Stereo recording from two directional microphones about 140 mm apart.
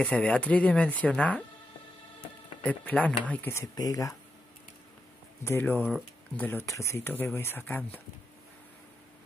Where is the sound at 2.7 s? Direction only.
10° left (ahead or behind).